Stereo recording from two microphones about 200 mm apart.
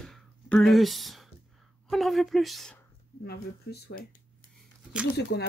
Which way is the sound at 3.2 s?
55° left (ahead or behind).